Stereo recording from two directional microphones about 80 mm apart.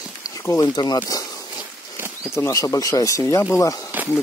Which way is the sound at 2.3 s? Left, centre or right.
Left.